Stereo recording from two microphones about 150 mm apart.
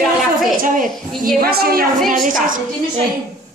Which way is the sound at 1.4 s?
85° right.